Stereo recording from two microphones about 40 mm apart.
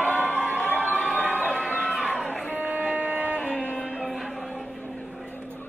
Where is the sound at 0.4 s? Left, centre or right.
Left.